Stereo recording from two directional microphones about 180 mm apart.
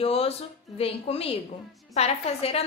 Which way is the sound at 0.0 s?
35° left (ahead or behind).